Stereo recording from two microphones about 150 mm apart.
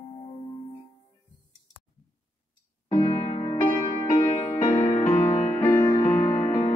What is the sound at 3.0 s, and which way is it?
Music, 40° left (ahead or behind).